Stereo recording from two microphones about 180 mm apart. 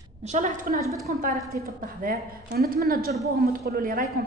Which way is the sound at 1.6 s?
50° right (ahead or behind).